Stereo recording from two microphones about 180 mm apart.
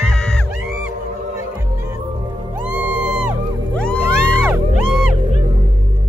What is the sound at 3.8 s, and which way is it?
Music, 5° left (ahead or behind).